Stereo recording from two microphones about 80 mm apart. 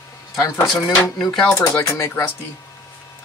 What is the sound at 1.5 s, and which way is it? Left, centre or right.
Speech, left.